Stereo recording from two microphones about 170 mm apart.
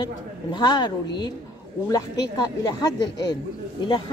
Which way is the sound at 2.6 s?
20° left (ahead or behind).